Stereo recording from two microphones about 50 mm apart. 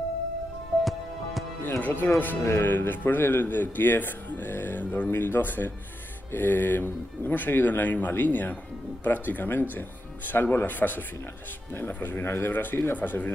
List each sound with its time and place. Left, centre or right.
1.8 s speech: left
2.4 s speech: left